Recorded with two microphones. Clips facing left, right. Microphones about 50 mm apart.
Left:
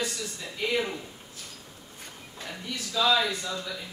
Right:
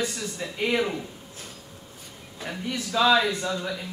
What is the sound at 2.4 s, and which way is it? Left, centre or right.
Speech, right.